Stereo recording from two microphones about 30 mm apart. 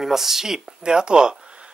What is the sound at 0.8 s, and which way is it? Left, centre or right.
Speech, right.